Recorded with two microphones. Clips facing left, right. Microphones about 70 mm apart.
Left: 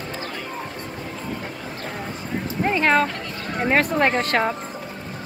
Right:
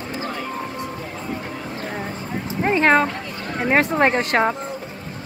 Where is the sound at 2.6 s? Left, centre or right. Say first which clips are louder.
Right 3 dB; right.